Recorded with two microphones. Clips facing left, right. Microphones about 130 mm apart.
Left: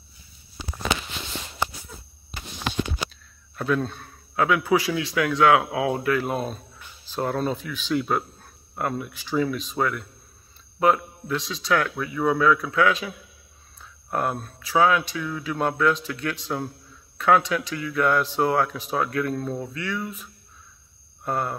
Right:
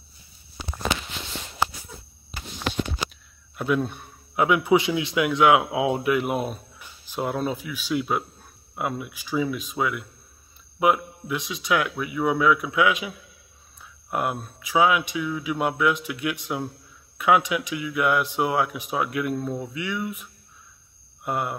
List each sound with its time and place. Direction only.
3.5 s speech: 15° right (ahead or behind)
14.1 s speech: 10° right (ahead or behind)